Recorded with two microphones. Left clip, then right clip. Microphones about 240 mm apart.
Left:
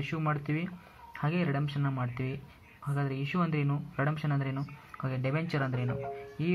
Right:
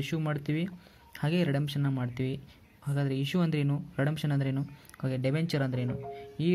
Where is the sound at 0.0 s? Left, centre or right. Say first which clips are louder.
Left 1 dB; right.